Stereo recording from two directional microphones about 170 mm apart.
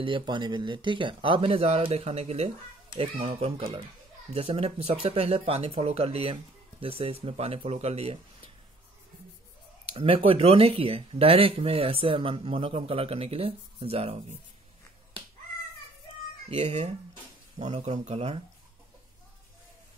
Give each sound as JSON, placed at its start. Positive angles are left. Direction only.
{"t": 0.0, "sound": "speech", "side_deg": -30}
{"t": 9.8, "sound": "speech", "side_deg": -35}
{"t": 16.4, "sound": "speech", "side_deg": -35}